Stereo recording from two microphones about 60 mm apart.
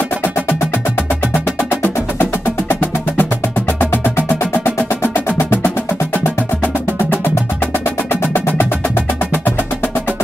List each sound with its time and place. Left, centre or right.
1.7 s music: left